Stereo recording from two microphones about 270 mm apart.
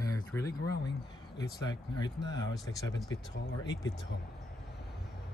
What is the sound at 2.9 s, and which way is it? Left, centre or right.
Speech, left.